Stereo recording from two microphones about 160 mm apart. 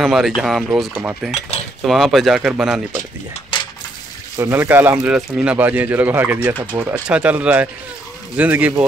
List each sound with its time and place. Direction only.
0.0 s speech: centre (ahead or behind)
3.5 s coin: 30° left (ahead or behind)
4.4 s speech: 15° right (ahead or behind)